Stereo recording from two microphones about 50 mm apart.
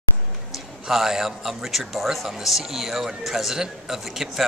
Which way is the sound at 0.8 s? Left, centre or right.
Centre.